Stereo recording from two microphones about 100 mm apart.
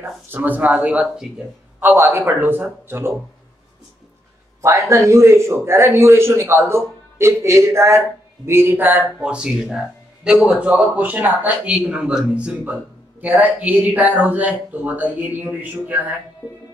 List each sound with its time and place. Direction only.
0.3 s a man's voice: 15° right (ahead or behind)
4.6 s a man's voice: 30° right (ahead or behind)